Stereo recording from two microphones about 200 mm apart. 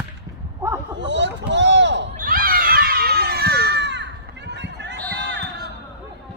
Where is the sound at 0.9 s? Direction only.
60° right (ahead or behind).